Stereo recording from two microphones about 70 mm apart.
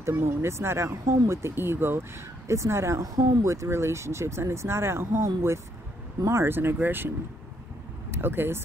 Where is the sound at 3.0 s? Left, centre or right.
Right.